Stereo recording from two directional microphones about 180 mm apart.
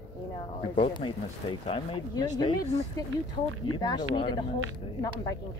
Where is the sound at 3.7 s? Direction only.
25° left (ahead or behind).